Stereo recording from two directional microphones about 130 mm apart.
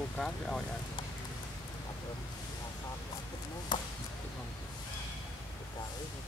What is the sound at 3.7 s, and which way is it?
Chop, 35° left (ahead or behind).